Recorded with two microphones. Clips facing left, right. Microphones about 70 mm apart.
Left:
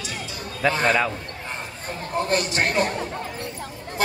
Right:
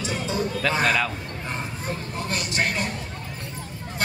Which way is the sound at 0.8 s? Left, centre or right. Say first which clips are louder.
Left 4 dB; centre.